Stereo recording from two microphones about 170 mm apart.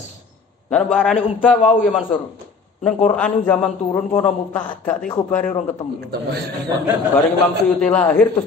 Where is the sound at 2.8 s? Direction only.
5° left (ahead or behind).